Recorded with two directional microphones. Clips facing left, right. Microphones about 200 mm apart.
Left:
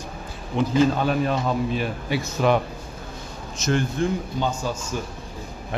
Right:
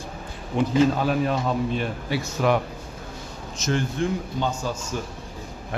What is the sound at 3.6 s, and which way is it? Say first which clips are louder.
Speech: left 2 dB; 55° left (ahead or behind).